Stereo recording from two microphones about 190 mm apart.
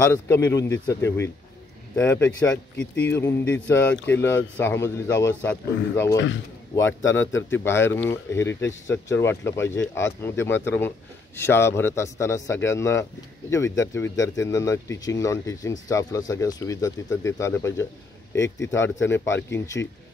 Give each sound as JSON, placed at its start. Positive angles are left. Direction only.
{"t": 0.0, "sound": "speech", "side_deg": 10}
{"t": 6.1, "sound": "speech", "side_deg": 75}
{"t": 6.7, "sound": "a man's voice", "side_deg": 10}